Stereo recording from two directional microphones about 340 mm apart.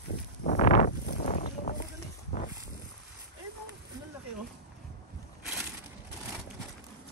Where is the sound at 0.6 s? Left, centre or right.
Left.